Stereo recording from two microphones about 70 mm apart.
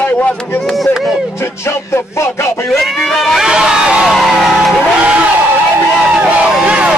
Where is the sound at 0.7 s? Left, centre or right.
Centre.